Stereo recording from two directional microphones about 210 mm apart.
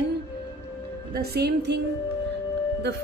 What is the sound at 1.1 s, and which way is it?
Speech, 50° right (ahead or behind).